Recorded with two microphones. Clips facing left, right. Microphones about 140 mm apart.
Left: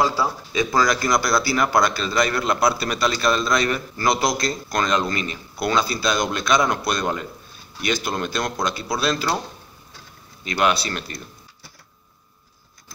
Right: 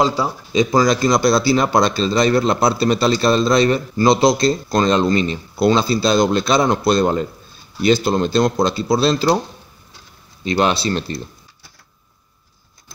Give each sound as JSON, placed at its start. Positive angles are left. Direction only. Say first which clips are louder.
{"t": 0.0, "sound": "speech", "louder": "right 3 dB", "side_deg": -20}
{"t": 10.4, "sound": "speech", "louder": "right 4 dB", "side_deg": -30}